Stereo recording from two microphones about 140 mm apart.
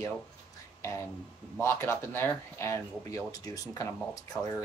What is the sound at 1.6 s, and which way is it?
Speech, 15° left (ahead or behind).